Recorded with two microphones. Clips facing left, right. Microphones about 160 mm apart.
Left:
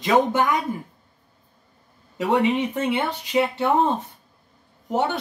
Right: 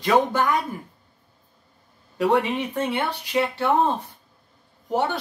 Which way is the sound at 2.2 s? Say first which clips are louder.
Left 1 dB; 20° left (ahead or behind).